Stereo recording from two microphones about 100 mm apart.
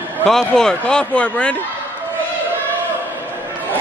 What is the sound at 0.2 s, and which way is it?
Speech, 5° left (ahead or behind).